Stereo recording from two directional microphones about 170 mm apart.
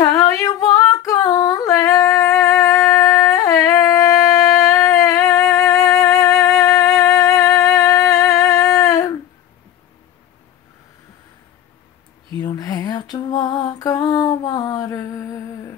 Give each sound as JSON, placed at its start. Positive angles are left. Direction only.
{"t": 0.0, "sound": "female singing", "side_deg": 20}
{"t": 12.4, "sound": "lullaby", "side_deg": 25}